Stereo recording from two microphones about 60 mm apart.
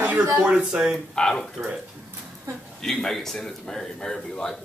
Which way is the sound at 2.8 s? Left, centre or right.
Centre.